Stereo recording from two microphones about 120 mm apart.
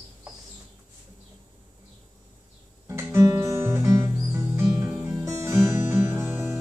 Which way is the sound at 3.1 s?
25° right (ahead or behind).